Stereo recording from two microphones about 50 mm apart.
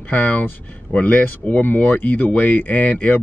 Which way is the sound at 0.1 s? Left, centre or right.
Left.